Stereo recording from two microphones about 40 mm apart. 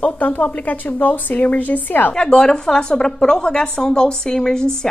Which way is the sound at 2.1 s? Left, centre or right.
Left.